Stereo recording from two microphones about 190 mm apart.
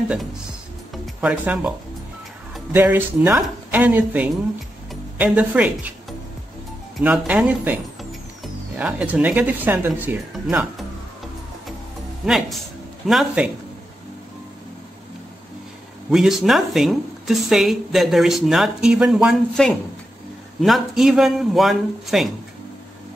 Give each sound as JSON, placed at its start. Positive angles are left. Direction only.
{"t": 0.9, "sound": "speech", "side_deg": -5}
{"t": 12.3, "sound": "speech", "side_deg": 0}
{"t": 16.1, "sound": "speech", "side_deg": 0}